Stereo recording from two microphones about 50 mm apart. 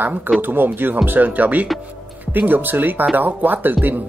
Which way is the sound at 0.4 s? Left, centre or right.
Right.